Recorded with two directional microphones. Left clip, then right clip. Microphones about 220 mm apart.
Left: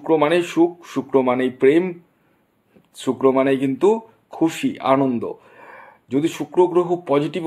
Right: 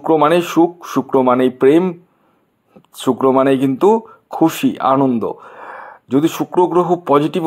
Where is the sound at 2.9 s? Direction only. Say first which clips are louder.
Right 4 dB; 25° right (ahead or behind).